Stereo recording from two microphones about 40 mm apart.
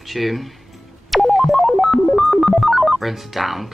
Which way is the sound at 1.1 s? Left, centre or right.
Centre.